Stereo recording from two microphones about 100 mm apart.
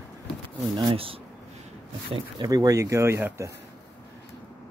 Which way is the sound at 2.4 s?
40° right (ahead or behind).